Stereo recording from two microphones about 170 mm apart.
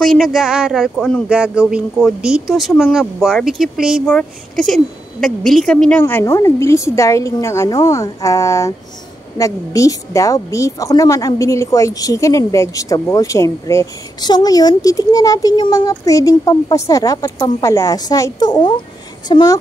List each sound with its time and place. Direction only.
0.0 s a woman's voice: centre (ahead or behind); by 19.5 s 25° left (ahead or behind)